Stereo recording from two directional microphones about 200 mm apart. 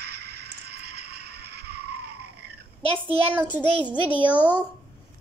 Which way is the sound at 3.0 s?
30° right (ahead or behind).